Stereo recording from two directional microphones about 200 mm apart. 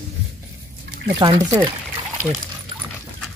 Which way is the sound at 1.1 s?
20° right (ahead or behind).